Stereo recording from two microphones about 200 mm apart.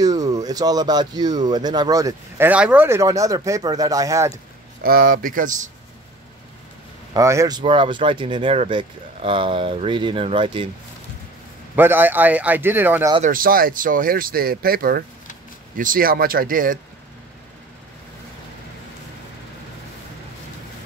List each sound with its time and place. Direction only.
0.0 s speech: 20° right (ahead or behind)
4.8 s speech: 45° right (ahead or behind)
7.2 s speech: 15° right (ahead or behind)
11.7 s a man's voice: 10° right (ahead or behind)
13.2 s speech: 45° right (ahead or behind)